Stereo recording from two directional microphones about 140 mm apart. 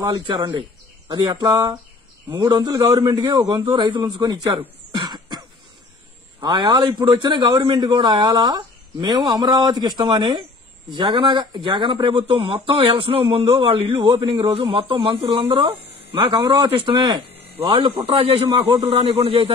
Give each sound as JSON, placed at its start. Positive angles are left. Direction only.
{"t": 0.0, "sound": "a man's voice", "side_deg": -30}
{"t": 4.2, "sound": "throat clearing", "side_deg": -30}
{"t": 6.4, "sound": "a man's voice", "side_deg": -30}